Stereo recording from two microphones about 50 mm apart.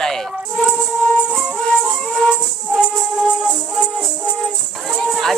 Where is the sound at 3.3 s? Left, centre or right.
Centre.